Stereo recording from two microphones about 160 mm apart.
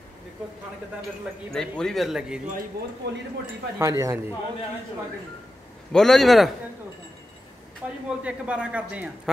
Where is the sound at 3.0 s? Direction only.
90° right.